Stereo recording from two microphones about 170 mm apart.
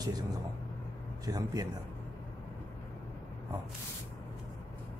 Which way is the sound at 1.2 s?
20° right (ahead or behind).